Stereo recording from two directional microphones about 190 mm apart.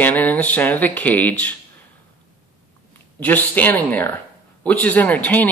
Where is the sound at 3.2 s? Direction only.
10° left (ahead or behind).